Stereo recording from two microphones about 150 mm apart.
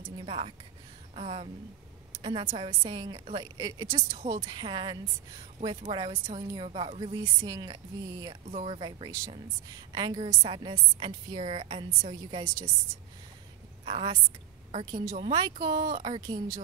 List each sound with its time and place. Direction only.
0.2 s a woman's voice: 35° right (ahead or behind)
7.2 s speech: 25° right (ahead or behind)
8.5 s a woman's voice: 40° right (ahead or behind)
13.8 s a woman's voice: 40° right (ahead or behind)
14.9 s speech: 30° right (ahead or behind)